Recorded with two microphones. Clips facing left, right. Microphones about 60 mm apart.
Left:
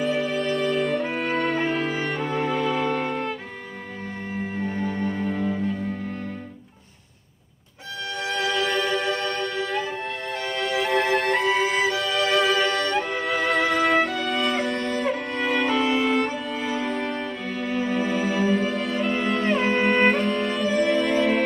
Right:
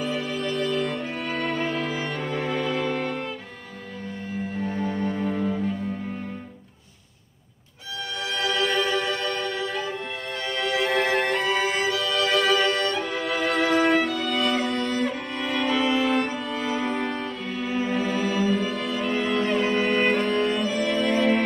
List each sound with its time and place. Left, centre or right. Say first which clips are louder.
0.0 s music: left 4 dB; centre
4.6 s music: right 1 dB; centre
8.4 s music: even; centre
14.6 s music: even; left
14.9 s music: left 1 dB; centre